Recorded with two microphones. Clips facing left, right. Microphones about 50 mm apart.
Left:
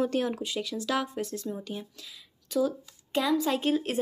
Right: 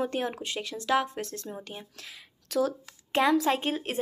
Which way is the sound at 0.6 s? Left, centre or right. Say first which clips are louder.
Right 4 dB; right.